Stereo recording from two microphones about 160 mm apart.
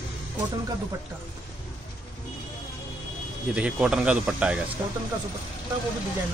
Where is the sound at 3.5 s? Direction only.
5° right (ahead or behind).